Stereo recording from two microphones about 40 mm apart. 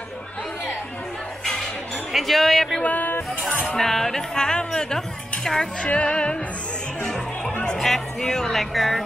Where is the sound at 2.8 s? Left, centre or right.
Left.